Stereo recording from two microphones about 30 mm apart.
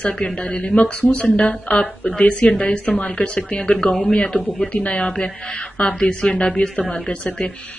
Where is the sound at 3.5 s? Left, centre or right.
Left.